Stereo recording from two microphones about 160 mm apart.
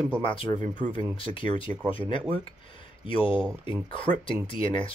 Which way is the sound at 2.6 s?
35° left (ahead or behind).